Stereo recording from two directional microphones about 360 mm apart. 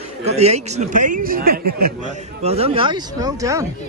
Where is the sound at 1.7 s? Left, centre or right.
Right.